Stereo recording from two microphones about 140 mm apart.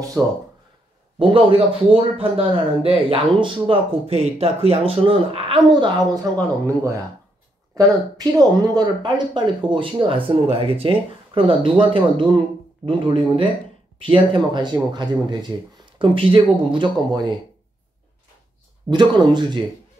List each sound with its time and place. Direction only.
0.2 s speech: 5° right (ahead or behind)
1.2 s speech: 40° right (ahead or behind)
7.7 s speech: 25° right (ahead or behind)
18.9 s speech: 35° right (ahead or behind)